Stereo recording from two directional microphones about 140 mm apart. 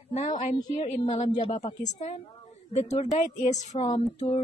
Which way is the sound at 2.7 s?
50° left (ahead or behind).